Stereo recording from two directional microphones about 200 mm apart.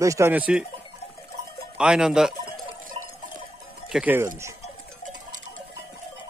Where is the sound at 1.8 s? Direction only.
5° right (ahead or behind).